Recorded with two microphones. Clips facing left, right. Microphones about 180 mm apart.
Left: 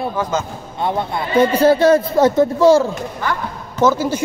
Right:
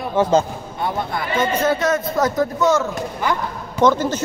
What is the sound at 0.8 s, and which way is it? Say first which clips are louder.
A man's voice: left 3 dB; 25° left (ahead or behind).